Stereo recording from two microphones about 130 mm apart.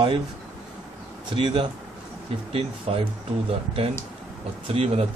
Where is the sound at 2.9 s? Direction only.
50° right (ahead or behind).